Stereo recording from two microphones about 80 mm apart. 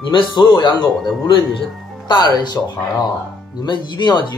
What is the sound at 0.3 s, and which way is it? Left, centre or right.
Speech, left.